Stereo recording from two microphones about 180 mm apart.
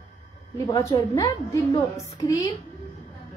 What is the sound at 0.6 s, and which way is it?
A woman's voice, 20° left (ahead or behind).